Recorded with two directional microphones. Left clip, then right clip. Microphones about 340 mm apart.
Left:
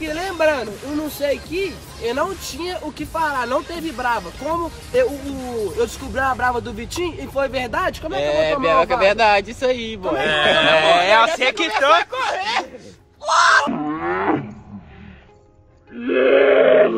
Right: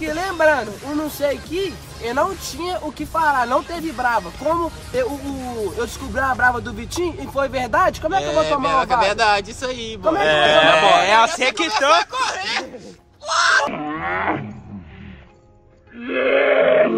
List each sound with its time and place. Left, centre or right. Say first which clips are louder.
0.1 s speech: right 2 dB; centre
8.2 s speech: left 3 dB; left
10.2 s a man's voice: right 2 dB; right
10.7 s speech: even; centre
12.0 s speech: even; left
13.7 s a sound: left 1 dB; left
16.0 s grunt: left 3 dB; centre